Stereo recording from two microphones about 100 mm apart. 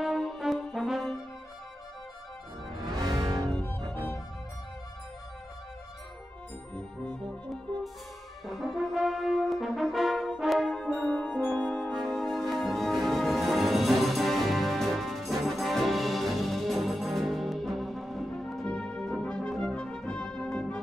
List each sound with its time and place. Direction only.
0.0 s brass instrument: centre (ahead or behind)
2.8 s music: 45° right (ahead or behind)
8.5 s brass instrument: centre (ahead or behind)
12.1 s music: centre (ahead or behind)
18.7 s brass instrument: 10° left (ahead or behind)